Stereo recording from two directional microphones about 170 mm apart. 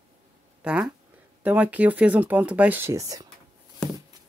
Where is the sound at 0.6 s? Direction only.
5° right (ahead or behind).